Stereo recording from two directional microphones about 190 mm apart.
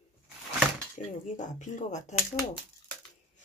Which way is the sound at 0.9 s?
40° left (ahead or behind).